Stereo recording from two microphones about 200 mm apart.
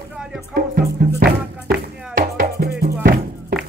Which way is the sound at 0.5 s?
45° right (ahead or behind).